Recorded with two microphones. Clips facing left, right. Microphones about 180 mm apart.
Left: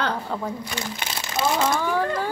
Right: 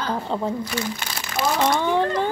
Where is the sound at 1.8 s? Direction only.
25° right (ahead or behind).